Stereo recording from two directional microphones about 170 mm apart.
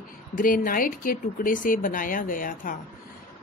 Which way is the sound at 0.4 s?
55° left (ahead or behind).